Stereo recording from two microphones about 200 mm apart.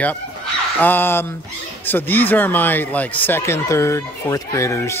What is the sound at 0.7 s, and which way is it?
Speech, 10° left (ahead or behind).